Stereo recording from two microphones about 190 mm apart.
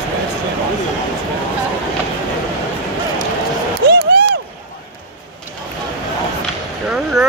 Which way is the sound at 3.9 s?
55° right (ahead or behind).